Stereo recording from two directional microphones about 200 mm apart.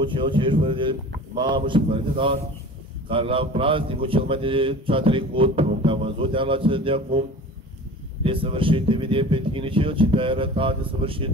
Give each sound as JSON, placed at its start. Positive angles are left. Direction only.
{"t": 0.0, "sound": "speech", "side_deg": -25}